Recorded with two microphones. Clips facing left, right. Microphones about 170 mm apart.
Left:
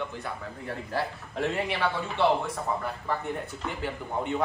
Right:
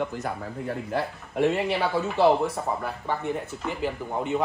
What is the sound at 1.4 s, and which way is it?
Speech, 30° right (ahead or behind).